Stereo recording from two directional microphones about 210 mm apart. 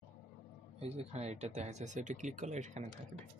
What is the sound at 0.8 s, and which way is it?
Speech, 30° right (ahead or behind).